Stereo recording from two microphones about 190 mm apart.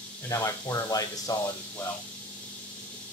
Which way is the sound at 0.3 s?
15° left (ahead or behind).